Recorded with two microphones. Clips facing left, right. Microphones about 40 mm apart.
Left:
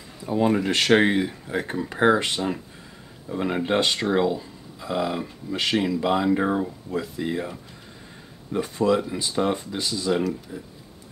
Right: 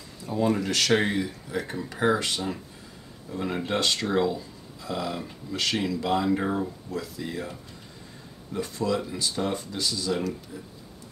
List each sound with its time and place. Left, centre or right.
0.2 s speech: left
8.5 s speech: left